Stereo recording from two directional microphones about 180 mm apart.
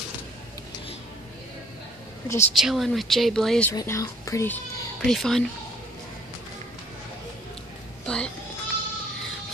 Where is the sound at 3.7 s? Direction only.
15° left (ahead or behind).